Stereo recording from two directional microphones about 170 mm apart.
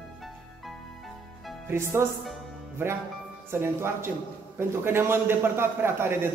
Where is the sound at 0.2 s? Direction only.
Centre (ahead or behind).